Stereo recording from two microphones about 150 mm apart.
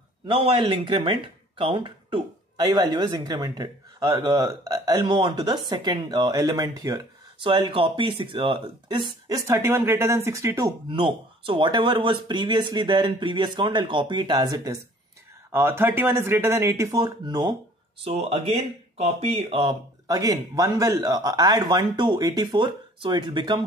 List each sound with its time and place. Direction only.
0.3 s speech: 35° right (ahead or behind)
7.3 s speech: 30° right (ahead or behind)
10.9 s speech: 35° right (ahead or behind)
18.0 s speech: 40° right (ahead or behind)